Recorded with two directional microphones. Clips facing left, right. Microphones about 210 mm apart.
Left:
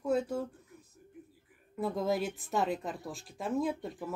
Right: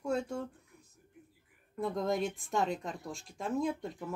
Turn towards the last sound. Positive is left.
turn(degrees=0)  # may be behind; listen again after turning